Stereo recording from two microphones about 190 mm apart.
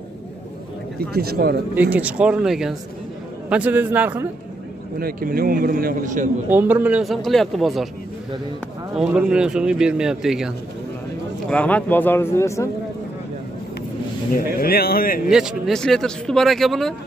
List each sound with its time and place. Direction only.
1.1 s speech: 55° right (ahead or behind)
1.8 s speech: 10° right (ahead or behind)
4.9 s a man's voice: 50° right (ahead or behind)
6.5 s speech: 10° right (ahead or behind)
8.9 s speech: 5° right (ahead or behind); by 12.6 s 15° left (ahead or behind)
14.3 s a man's voice: 50° left (ahead or behind)
15.2 s speech: 5° right (ahead or behind)